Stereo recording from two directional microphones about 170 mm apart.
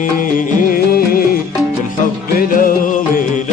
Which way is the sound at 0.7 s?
60° left (ahead or behind).